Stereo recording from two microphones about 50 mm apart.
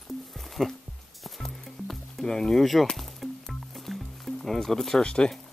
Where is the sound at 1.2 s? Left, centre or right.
Centre.